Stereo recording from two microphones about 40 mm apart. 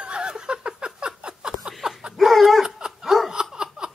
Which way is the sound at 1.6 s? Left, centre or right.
Centre.